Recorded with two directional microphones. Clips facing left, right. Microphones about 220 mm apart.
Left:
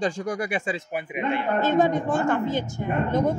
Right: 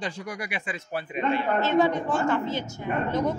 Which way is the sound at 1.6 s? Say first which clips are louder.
Left 3 dB; 50° left (ahead or behind).